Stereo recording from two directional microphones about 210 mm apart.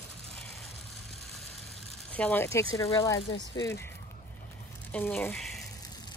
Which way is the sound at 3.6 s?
15° left (ahead or behind).